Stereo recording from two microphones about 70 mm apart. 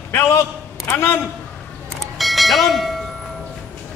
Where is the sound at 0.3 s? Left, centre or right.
Left.